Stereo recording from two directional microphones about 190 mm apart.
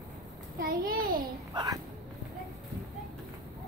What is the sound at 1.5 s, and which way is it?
Speech, 20° right (ahead or behind).